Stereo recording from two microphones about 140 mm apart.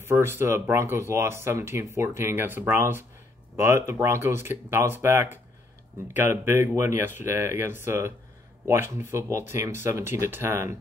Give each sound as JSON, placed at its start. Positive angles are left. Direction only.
{"t": 0.0, "sound": "speech", "side_deg": -15}